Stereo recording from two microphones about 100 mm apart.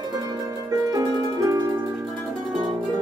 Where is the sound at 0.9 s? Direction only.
35° right (ahead or behind).